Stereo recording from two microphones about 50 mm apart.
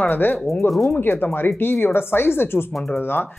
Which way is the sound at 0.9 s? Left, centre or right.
Left.